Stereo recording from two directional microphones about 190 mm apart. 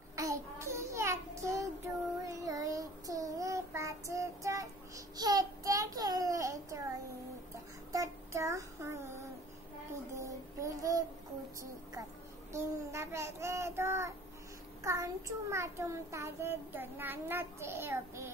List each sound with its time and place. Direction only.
0.1 s child singing: 15° right (ahead or behind)
7.9 s child singing: 15° right (ahead or behind)
10.1 s music: 15° right (ahead or behind)
12.5 s child singing: 15° right (ahead or behind)
14.8 s a child's voice: 15° right (ahead or behind)